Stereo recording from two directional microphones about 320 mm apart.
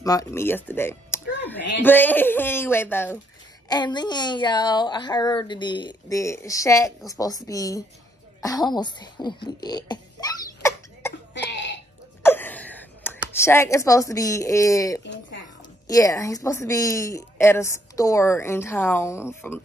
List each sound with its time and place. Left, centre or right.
0.0 s speech: centre
10.6 s cough: centre
11.3 s cough: left
12.2 s a sound: centre
15.9 s speech: centre